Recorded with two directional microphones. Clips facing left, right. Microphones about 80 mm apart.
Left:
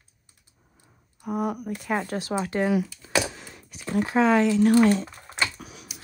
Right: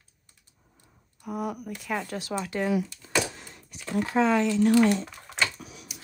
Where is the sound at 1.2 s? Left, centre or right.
Left.